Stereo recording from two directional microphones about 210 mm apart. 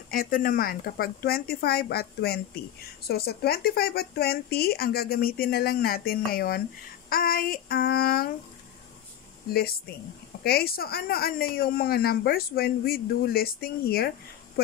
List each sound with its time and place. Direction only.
0.1 s speech: 45° left (ahead or behind)
9.5 s speech: 45° left (ahead or behind)